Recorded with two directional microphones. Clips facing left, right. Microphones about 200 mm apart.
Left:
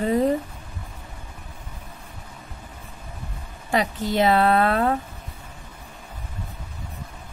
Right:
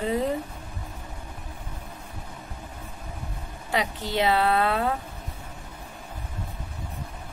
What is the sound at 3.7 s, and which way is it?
A woman's voice, 45° left (ahead or behind).